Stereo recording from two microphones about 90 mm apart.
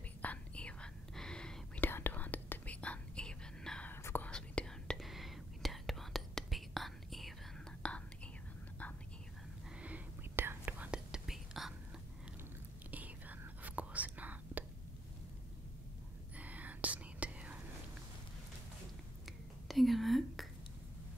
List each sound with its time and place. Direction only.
0.2 s whispering: 15° left (ahead or behind)
1.8 s whispering: 25° left (ahead or behind)
3.9 s whispering: 25° left (ahead or behind)
4.3 s whispering: 10° left (ahead or behind)
4.9 s whispering: centre (ahead or behind)
7.8 s whispering: 15° left (ahead or behind)
9.8 s whispering: 15° right (ahead or behind)
11.1 s whispering: 5° right (ahead or behind)
12.9 s whispering: 20° right (ahead or behind)
16.3 s whispering: 15° right (ahead or behind)
19.7 s whispering: centre (ahead or behind)